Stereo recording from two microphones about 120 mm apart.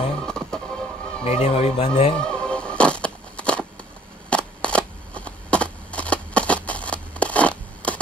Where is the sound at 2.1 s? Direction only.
5° left (ahead or behind).